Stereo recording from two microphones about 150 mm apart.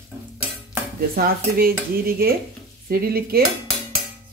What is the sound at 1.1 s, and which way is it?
Speech, 85° right.